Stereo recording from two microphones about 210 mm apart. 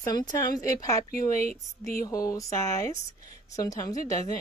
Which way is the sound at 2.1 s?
15° left (ahead or behind).